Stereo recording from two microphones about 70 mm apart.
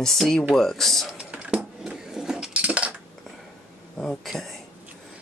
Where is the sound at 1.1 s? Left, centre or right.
Centre.